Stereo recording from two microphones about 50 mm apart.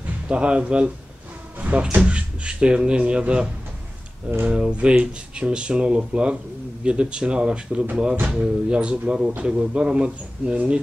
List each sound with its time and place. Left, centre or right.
0.3 s speech: right
4.5 s speech: right